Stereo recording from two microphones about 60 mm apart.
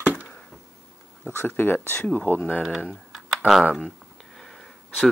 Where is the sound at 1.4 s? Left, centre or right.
Left.